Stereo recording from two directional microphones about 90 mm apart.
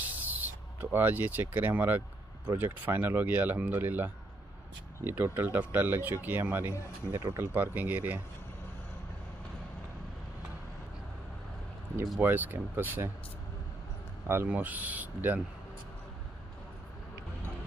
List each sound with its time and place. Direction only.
0.0 s speech: 20° right (ahead or behind)
7.1 s speech: 45° right (ahead or behind)
7.3 s speech: 20° right (ahead or behind)
12.2 s speech: 20° right (ahead or behind)
14.2 s speech: 25° right (ahead or behind)